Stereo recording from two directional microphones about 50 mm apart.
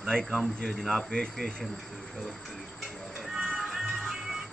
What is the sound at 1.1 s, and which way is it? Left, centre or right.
Speech, centre.